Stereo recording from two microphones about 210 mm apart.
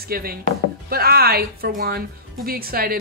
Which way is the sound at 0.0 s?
45° right (ahead or behind).